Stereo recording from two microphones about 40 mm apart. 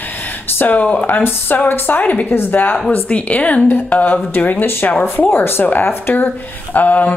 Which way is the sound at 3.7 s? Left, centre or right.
Left.